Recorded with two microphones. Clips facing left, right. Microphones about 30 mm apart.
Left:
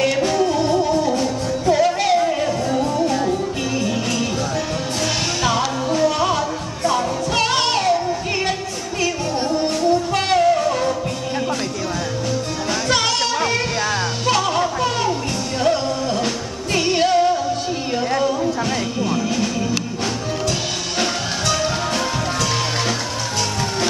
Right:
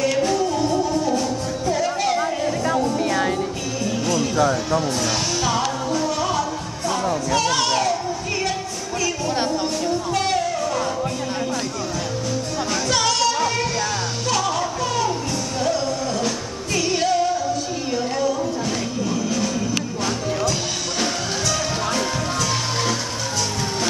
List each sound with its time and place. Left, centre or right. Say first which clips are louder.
0.0 s music: left 2 dB; left
3.9 s music: even; left
5.4 s music: left 2 dB; left
10.1 s music: left 4 dB; left
12.9 s music: even; left
18.9 s music: left 2 dB; left
21.0 s music: left 2 dB; left